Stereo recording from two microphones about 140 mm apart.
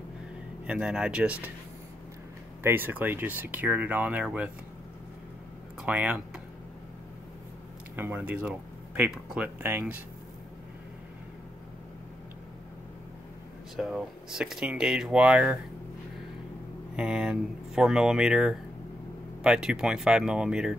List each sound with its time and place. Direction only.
0.7 s speech: 5° right (ahead or behind)
2.6 s speech: 15° right (ahead or behind)
5.8 s speech: 10° right (ahead or behind)
7.9 s speech: 15° right (ahead or behind)
13.7 s speech: centre (ahead or behind)
16.9 s speech: 5° right (ahead or behind)